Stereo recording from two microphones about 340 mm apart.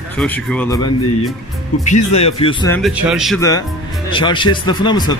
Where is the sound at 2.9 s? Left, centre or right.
Centre.